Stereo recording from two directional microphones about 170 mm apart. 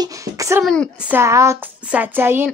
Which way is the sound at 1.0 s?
15° right (ahead or behind).